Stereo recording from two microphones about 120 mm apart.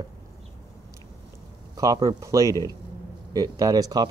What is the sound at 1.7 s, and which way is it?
Speech, 30° right (ahead or behind).